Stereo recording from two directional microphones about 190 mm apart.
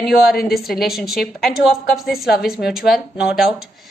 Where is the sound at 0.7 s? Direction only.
Centre (ahead or behind).